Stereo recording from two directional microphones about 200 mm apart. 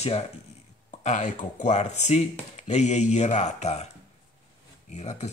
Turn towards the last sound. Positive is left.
turn(degrees=35)  # may be behind; listen again after turning